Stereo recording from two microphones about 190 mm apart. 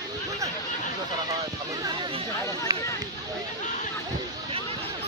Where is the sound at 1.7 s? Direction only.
20° right (ahead or behind).